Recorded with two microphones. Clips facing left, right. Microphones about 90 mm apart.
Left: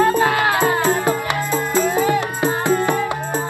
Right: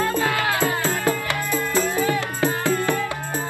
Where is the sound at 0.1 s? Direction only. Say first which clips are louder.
Left 5 dB; 20° left (ahead or behind).